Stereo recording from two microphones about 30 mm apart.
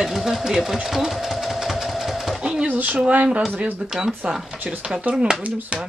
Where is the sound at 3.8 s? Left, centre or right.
Right.